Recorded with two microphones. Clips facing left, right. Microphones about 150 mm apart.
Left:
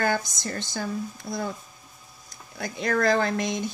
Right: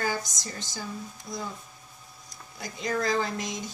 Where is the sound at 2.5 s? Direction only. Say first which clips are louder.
Left 4 dB; 65° left (ahead or behind).